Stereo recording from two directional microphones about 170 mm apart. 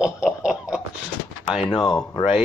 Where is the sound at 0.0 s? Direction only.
5° right (ahead or behind).